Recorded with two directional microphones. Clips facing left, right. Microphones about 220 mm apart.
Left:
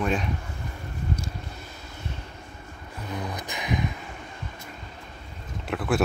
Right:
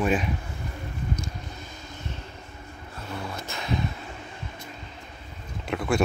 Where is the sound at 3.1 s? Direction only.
15° left (ahead or behind).